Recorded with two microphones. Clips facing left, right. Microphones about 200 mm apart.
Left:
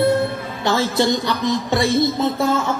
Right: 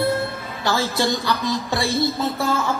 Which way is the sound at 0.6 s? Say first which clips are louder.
Left 3 dB; 20° left (ahead or behind).